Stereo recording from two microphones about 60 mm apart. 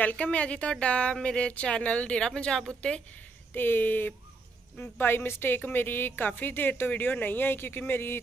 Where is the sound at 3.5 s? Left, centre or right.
Left.